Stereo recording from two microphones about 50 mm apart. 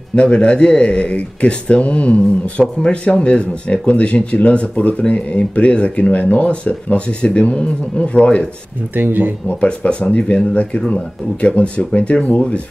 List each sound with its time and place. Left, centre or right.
0.1 s speech: left
8.9 s speech: right
9.5 s speech: left